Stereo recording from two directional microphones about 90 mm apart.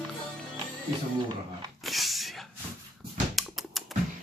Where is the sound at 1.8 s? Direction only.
Centre (ahead or behind).